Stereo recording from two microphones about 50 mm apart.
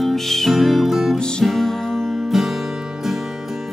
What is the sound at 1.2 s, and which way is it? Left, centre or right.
Music, centre.